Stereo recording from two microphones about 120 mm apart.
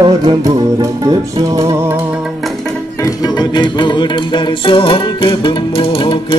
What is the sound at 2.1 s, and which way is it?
Music, 5° right (ahead or behind).